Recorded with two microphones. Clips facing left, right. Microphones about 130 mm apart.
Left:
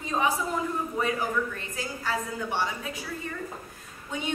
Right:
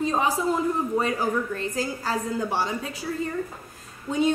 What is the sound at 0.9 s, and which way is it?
A woman's voice, 35° right (ahead or behind).